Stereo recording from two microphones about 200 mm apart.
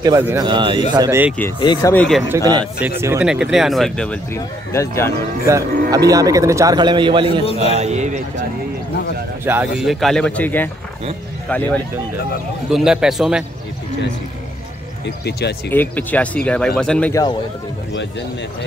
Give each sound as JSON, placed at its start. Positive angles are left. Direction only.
{"t": 0.0, "sound": "a man's voice", "side_deg": -15}
{"t": 1.6, "sound": "speech", "side_deg": 20}
{"t": 2.2, "sound": "a man's voice", "side_deg": -15}
{"t": 5.5, "sound": "a man's voice", "side_deg": -15}
{"t": 9.4, "sound": "a man's voice", "side_deg": -10}
{"t": 9.8, "sound": "speech", "side_deg": 0}
{"t": 12.6, "sound": "speech", "side_deg": 0}
{"t": 15.0, "sound": "speech", "side_deg": 55}
{"t": 15.7, "sound": "speech", "side_deg": 10}
{"t": 17.1, "sound": "speech", "side_deg": 20}